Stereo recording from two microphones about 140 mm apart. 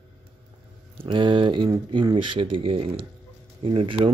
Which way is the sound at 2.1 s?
35° right (ahead or behind).